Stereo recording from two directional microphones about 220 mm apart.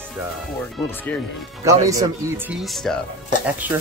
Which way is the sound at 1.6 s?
15° right (ahead or behind).